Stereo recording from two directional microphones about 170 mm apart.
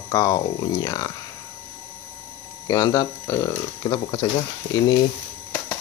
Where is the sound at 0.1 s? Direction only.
20° left (ahead or behind).